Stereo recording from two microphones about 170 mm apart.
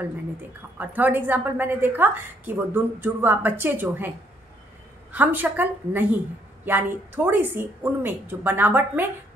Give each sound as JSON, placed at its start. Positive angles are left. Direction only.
{"t": 0.7, "sound": "a woman's voice", "side_deg": -10}
{"t": 5.1, "sound": "a woman's voice", "side_deg": -10}